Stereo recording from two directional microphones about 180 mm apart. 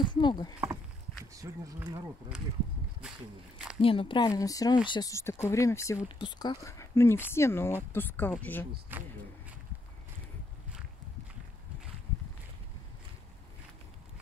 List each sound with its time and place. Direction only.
0.0 s speech: 25° left (ahead or behind)
1.3 s speech: 20° right (ahead or behind)
3.8 s speech: 30° left (ahead or behind); by 8.6 s 10° left (ahead or behind)
8.9 s speech: 10° right (ahead or behind)